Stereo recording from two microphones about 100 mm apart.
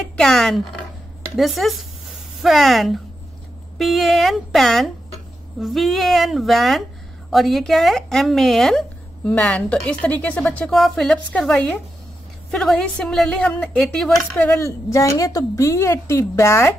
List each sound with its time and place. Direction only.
0.2 s a woman's voice: 5° left (ahead or behind)
14.6 s a woman's voice: 30° left (ahead or behind)